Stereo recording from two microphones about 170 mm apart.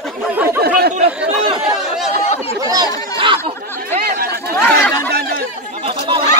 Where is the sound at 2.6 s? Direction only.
20° right (ahead or behind).